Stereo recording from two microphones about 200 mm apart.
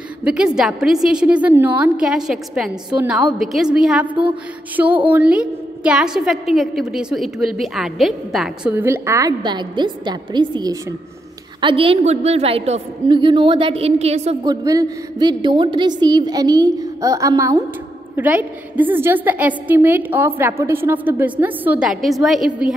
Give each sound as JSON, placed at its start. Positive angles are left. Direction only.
{"t": 0.2, "sound": "a woman's voice", "side_deg": -5}
{"t": 14.4, "sound": "a woman's voice", "side_deg": -20}